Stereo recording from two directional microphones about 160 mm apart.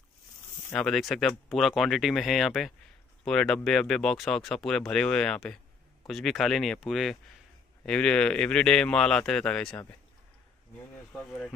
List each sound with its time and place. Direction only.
0.7 s speech: 5° left (ahead or behind)
11.1 s speech: centre (ahead or behind)